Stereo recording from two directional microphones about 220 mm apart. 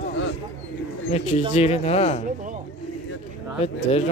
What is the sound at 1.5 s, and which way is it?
Speech, 30° left (ahead or behind).